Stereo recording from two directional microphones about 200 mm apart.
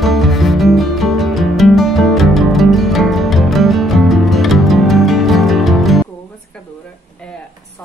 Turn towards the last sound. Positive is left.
turn(degrees=0)  # may be behind; listen again after turning